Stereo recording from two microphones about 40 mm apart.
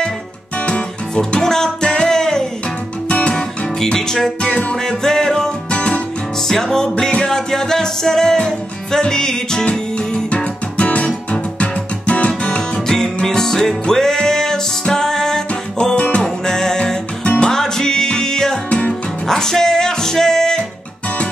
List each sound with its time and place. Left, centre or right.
0.7 s guitar: left
1.4 s music: centre
3.1 s music: left
3.8 s music: centre
4.5 s music: left
4.8 s music: centre
5.7 s music: left
6.4 s music: centre
9.7 s music: left
12.8 s music: centre
18.7 s music: left
19.2 s music: centre